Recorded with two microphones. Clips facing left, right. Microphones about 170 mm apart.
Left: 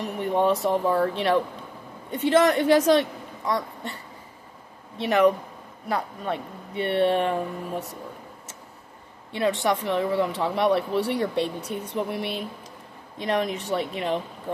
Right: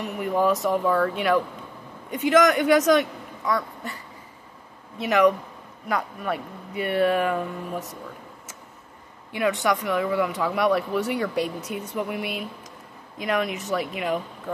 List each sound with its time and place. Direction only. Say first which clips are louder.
0.0 s speech: even; 30° left (ahead or behind)
9.3 s speech: even; 30° left (ahead or behind)